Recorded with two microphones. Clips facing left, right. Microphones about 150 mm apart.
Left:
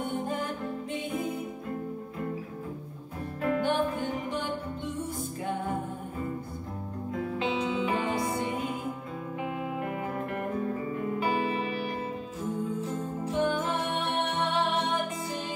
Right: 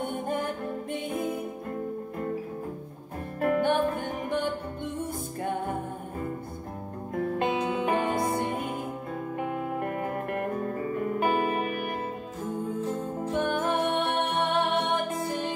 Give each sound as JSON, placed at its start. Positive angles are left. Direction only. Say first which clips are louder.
{"t": 0.0, "sound": "music", "louder": "right 2 dB", "side_deg": -55}
{"t": 3.3, "sound": "music", "louder": "right 3 dB", "side_deg": -55}
{"t": 7.1, "sound": "music", "louder": "right 3 dB", "side_deg": -55}